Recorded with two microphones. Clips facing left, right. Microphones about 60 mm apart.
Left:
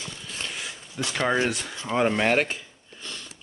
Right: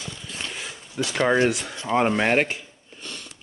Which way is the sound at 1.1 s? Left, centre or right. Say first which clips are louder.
Right 4 dB; centre.